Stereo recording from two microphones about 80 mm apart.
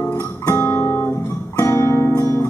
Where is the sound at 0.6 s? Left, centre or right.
Left.